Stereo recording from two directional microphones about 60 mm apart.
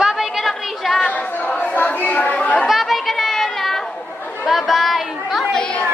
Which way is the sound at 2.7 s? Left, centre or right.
Centre.